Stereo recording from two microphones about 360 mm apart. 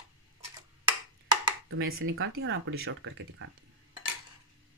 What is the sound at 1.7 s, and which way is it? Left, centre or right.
Speech, right.